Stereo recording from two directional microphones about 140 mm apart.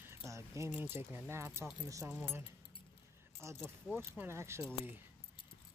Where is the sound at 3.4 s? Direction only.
20° right (ahead or behind).